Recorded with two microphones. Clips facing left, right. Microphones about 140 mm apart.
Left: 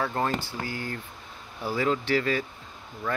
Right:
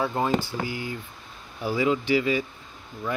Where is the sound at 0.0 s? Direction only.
10° right (ahead or behind).